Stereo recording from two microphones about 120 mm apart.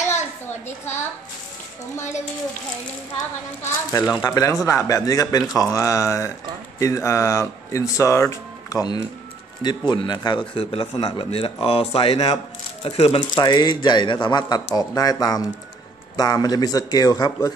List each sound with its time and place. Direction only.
0.1 s a sound: 75° left (ahead or behind)
3.6 s speech: 30° left (ahead or behind)
10.6 s speech: 50° left (ahead or behind)
13.3 s speech: 35° left (ahead or behind)